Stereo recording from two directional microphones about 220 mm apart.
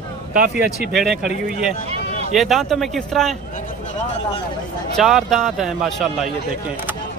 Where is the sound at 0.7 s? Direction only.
Centre (ahead or behind).